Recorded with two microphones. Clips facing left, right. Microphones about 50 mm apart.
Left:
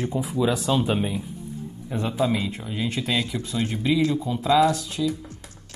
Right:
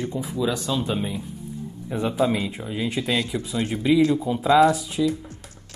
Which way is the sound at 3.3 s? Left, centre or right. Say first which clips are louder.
Right 1 dB; right.